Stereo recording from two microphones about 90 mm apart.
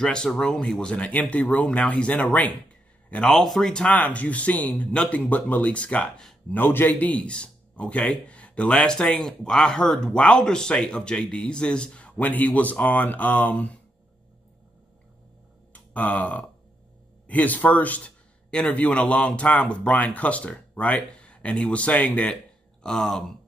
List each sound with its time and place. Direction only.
0.0 s a man's voice: 10° left (ahead or behind)
15.7 s a sound: 15° left (ahead or behind)
17.3 s a man's voice: 15° left (ahead or behind)